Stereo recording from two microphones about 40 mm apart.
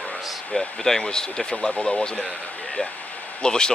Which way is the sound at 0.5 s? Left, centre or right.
Centre.